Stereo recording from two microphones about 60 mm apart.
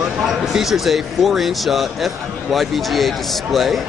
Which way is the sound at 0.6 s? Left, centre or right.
Centre.